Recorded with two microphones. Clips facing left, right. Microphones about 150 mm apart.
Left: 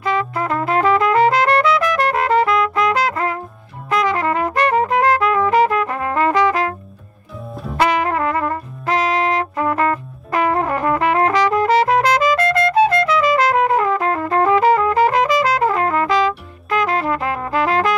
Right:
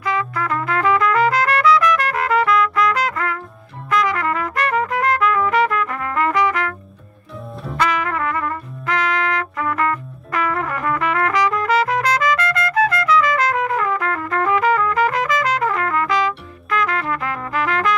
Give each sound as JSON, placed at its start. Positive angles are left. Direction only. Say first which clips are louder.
{"t": 0.0, "sound": "trumpet", "louder": "left 2 dB", "side_deg": 30}
{"t": 7.7, "sound": "trumpet", "louder": "left 4 dB", "side_deg": 30}